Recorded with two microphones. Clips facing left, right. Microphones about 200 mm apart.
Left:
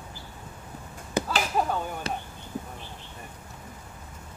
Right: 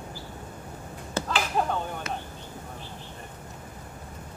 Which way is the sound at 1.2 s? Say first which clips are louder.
Left 1 dB; 15° left (ahead or behind).